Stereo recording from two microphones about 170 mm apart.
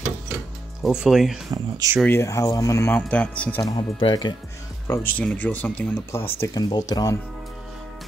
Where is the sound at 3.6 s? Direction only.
20° left (ahead or behind).